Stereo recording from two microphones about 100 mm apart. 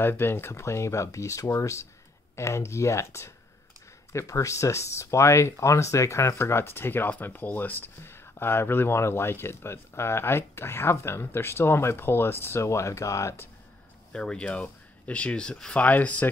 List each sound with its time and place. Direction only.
0.0 s speech: 25° left (ahead or behind)
14.1 s speech: 10° left (ahead or behind)